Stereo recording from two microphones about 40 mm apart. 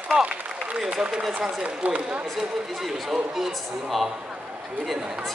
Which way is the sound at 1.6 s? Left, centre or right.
Right.